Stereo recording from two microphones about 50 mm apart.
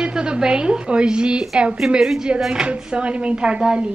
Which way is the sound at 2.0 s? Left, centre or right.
Centre.